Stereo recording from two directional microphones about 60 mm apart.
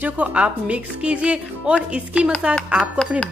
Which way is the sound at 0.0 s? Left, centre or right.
Right.